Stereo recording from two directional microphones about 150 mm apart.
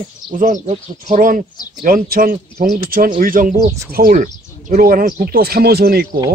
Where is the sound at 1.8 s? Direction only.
80° right.